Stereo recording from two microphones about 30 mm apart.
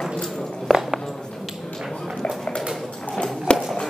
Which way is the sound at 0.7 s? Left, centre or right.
Centre.